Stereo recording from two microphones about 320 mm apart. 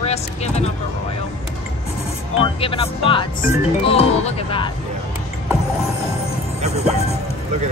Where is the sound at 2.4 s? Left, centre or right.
Centre.